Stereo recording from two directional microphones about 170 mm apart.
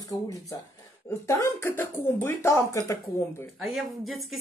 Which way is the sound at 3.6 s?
Centre (ahead or behind).